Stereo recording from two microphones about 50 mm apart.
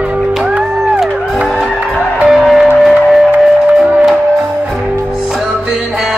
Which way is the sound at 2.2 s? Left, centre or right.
Centre.